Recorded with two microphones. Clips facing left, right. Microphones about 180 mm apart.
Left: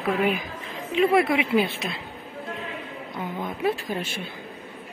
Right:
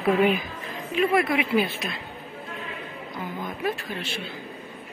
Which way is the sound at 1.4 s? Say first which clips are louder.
Left 1 dB; 25° left (ahead or behind).